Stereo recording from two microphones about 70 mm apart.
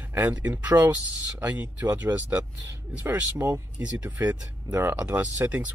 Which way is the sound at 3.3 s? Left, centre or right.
Right.